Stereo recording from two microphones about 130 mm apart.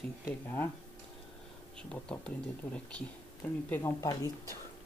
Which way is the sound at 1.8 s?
5° left (ahead or behind).